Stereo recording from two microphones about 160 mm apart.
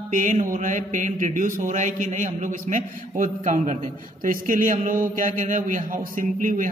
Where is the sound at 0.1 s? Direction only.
50° right (ahead or behind).